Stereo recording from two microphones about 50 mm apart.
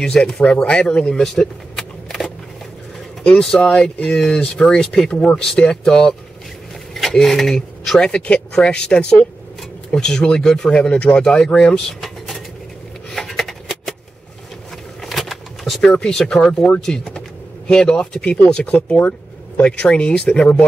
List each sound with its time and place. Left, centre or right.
0.2 s speech: centre
3.3 s speech: centre
6.9 s a sound: centre
8.0 s speech: centre
10.7 s speech: left
11.1 s speech: centre
13.1 s a sound: centre
15.0 s power windows: centre
15.8 s speech: centre; by 19.6 s left
19.6 s speech: centre